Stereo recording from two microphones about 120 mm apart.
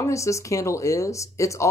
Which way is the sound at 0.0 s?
25° left (ahead or behind).